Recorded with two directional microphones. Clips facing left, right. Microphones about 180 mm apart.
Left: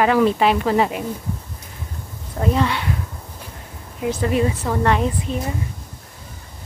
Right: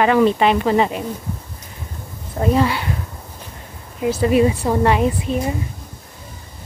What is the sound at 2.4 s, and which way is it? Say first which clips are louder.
Speech: right 3 dB; 5° right (ahead or behind).